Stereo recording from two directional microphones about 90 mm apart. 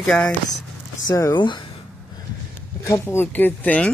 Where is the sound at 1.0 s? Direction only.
40° left (ahead or behind).